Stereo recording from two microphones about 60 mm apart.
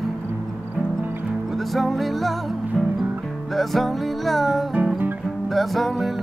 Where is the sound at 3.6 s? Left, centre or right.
Centre.